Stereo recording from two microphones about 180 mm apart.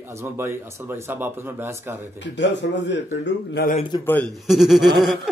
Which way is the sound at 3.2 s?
65° left (ahead or behind).